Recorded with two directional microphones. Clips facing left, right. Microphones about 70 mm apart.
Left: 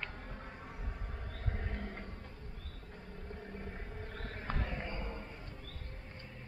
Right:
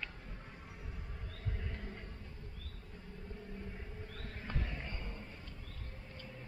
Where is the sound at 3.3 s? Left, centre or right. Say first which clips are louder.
Left 3 dB; left.